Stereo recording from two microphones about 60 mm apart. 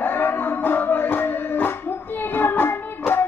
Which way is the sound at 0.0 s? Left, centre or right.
Left.